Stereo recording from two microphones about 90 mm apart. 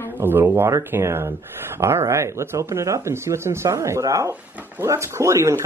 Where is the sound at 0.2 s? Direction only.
25° right (ahead or behind).